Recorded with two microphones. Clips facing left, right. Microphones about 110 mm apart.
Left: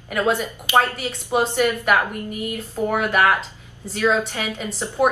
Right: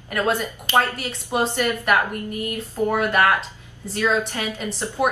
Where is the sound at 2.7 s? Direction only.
15° left (ahead or behind).